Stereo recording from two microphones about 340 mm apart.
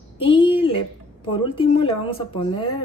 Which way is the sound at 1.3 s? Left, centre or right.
Centre.